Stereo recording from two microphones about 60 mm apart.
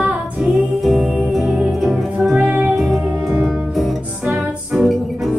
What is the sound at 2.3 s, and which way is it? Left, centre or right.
Music, right.